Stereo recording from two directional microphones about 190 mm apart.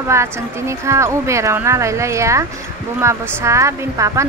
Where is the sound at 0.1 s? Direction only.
15° right (ahead or behind).